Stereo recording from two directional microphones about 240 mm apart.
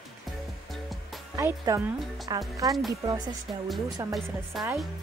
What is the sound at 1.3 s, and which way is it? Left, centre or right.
Speech, centre.